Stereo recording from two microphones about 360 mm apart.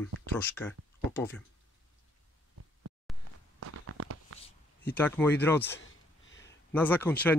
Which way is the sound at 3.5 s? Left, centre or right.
Right.